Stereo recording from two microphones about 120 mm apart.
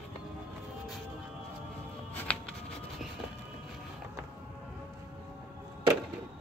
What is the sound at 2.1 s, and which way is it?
Music, 10° left (ahead or behind).